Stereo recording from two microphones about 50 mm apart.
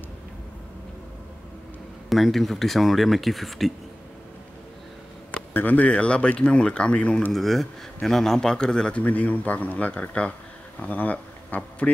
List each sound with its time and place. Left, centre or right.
2.0 s speech: centre
5.5 s speech: left
7.3 s a man's voice: centre
9.0 s speech: left